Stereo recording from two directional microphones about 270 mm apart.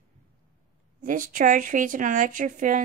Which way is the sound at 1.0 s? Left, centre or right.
Right.